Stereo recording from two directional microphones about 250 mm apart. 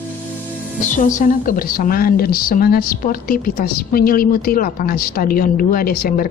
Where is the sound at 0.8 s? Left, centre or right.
Left.